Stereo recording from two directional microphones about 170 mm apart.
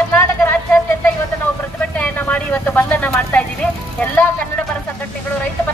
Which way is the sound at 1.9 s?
10° left (ahead or behind).